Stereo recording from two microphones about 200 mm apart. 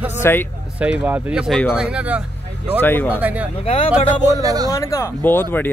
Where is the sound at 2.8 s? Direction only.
10° left (ahead or behind).